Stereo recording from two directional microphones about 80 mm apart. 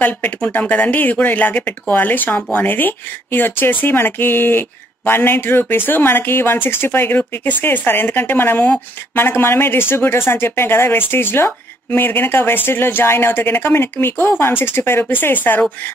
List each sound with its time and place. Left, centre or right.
0.0 s speech: centre